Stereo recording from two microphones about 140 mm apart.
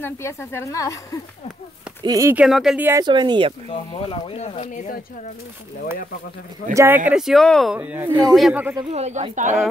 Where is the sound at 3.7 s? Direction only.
40° left (ahead or behind).